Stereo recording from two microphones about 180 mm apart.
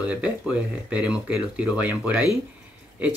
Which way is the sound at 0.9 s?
5° right (ahead or behind).